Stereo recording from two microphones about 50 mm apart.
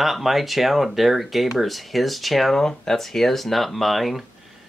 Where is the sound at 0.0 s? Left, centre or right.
Centre.